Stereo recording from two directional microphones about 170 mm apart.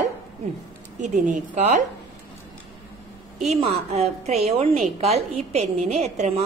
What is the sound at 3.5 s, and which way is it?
A woman's voice, 40° right (ahead or behind).